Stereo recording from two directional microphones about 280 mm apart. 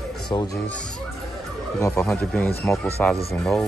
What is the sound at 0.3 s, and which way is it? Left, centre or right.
Speech, centre.